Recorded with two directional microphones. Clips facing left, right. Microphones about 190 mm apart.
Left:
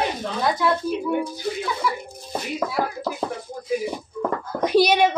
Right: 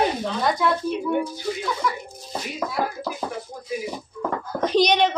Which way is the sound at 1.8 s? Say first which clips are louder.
Left 1 dB; 5° left (ahead or behind).